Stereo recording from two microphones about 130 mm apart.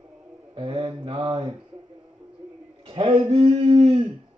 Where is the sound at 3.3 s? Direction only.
50° right (ahead or behind).